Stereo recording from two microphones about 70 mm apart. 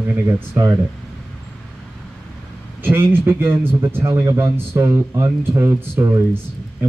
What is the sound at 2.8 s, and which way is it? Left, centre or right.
A man's voice, right.